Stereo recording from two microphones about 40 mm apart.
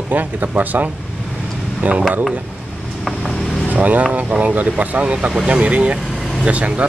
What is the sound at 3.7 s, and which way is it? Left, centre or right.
Speech, right.